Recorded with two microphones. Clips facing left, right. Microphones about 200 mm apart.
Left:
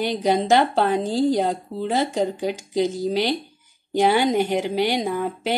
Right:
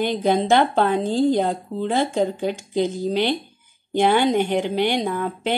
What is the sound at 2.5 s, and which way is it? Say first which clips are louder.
Speech: even; 40° left (ahead or behind).